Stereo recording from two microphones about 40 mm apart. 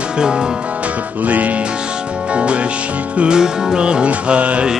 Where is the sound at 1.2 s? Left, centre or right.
Right.